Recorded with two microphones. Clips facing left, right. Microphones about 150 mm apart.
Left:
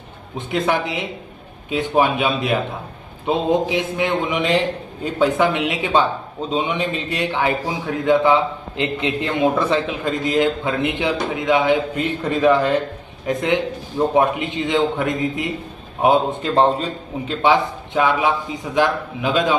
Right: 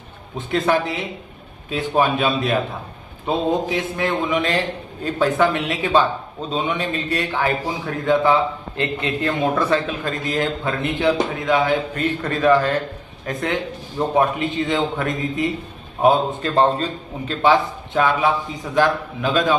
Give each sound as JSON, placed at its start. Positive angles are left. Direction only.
{"t": 0.5, "sound": "a man's voice", "side_deg": 15}